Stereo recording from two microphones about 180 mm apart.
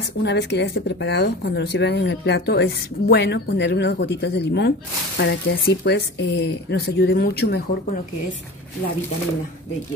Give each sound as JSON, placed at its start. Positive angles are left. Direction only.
{"t": 0.2, "sound": "speech", "side_deg": 70}
{"t": 5.2, "sound": "speech", "side_deg": 80}